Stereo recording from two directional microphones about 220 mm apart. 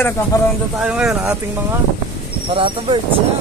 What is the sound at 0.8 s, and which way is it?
Speech, 5° right (ahead or behind).